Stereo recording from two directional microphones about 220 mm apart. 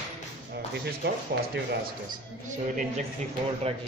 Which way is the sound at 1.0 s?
45° right (ahead or behind).